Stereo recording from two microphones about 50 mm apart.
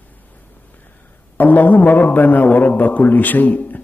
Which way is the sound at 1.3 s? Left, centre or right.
Left.